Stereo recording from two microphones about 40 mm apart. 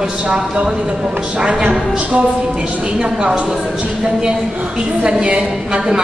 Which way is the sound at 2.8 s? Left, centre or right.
Right.